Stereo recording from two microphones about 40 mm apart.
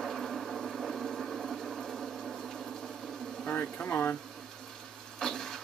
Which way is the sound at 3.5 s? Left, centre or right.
Left.